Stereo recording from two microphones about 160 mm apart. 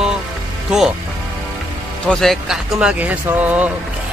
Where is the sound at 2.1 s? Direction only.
Centre (ahead or behind).